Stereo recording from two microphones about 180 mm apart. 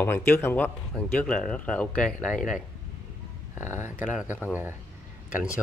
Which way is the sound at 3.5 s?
15° right (ahead or behind).